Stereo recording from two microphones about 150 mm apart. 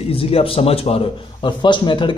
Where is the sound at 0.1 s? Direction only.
40° left (ahead or behind).